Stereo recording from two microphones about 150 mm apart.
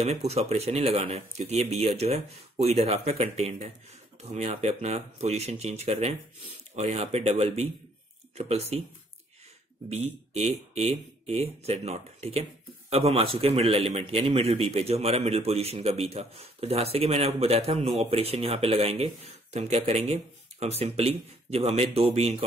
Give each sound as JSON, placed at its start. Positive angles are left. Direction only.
{"t": 0.0, "sound": "a man's voice", "side_deg": -45}
{"t": 9.8, "sound": "a man's voice", "side_deg": -45}